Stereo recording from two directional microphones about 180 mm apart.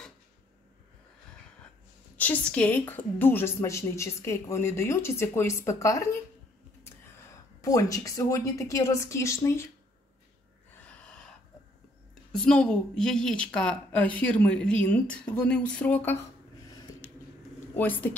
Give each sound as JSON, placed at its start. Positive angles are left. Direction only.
{"t": 2.1, "sound": "a woman's voice", "side_deg": 10}
{"t": 7.6, "sound": "a woman's voice", "side_deg": 20}
{"t": 10.9, "sound": "gasp", "side_deg": 5}
{"t": 12.3, "sound": "a woman's voice", "side_deg": 5}
{"t": 17.7, "sound": "a woman's voice", "side_deg": 10}